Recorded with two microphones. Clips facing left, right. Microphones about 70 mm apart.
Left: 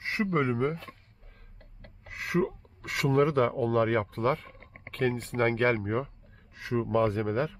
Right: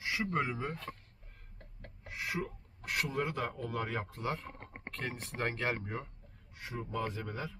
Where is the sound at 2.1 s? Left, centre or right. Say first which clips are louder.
Left 9 dB; left.